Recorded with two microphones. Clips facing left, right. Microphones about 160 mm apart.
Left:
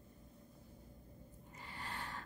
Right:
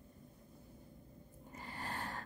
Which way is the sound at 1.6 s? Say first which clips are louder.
Right 4 dB; 45° right (ahead or behind).